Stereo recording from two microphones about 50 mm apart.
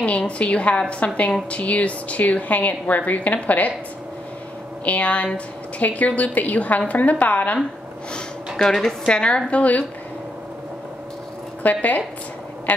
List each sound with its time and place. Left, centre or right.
0.2 s a woman's voice: left
4.8 s a woman's voice: left
9.0 s a woman's voice: centre
11.6 s a woman's voice: left